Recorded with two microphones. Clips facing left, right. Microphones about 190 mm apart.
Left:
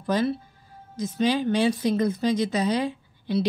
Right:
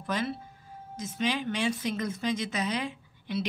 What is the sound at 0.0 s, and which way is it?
Speech, 35° left (ahead or behind).